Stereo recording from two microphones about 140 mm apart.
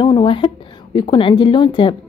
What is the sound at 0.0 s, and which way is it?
A woman's voice, 30° left (ahead or behind).